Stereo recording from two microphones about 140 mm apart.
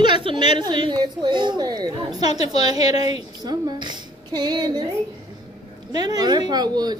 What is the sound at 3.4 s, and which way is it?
A woman's voice, 30° right (ahead or behind).